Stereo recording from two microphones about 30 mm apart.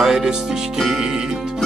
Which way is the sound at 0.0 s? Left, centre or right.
Centre.